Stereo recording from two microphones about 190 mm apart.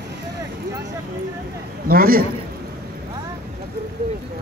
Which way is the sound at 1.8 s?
50° right (ahead or behind).